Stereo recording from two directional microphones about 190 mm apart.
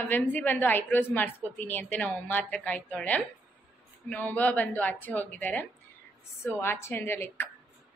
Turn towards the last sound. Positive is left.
turn(degrees=10)  # may be behind; listen again after turning